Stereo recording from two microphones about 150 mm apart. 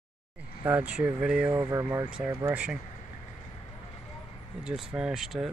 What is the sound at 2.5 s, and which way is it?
Speech, 5° right (ahead or behind).